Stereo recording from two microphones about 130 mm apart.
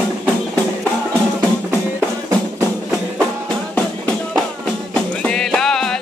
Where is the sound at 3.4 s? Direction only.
10° left (ahead or behind).